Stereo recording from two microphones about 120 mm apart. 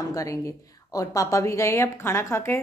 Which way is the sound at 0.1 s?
25° left (ahead or behind).